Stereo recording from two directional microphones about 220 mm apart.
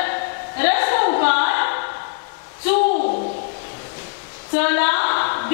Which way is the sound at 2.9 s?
40° left (ahead or behind).